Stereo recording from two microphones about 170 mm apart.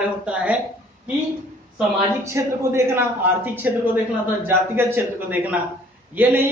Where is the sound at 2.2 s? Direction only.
15° right (ahead or behind).